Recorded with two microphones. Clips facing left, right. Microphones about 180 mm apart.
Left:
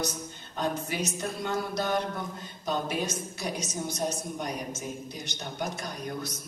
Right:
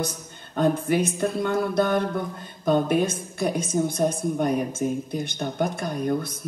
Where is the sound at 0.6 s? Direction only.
55° right (ahead or behind).